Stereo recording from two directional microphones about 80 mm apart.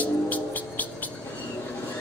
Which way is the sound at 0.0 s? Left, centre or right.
Centre.